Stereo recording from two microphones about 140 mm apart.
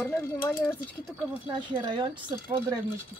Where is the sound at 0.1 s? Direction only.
20° left (ahead or behind).